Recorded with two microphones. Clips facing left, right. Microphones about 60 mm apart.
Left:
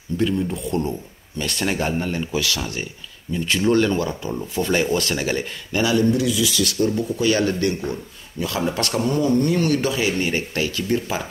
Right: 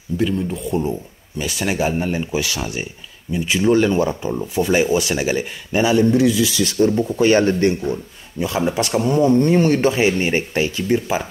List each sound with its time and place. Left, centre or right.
0.2 s speech: centre
4.0 s speech: right
4.3 s speech: centre
6.2 s speech: right
6.6 s speech: right
9.2 s speech: right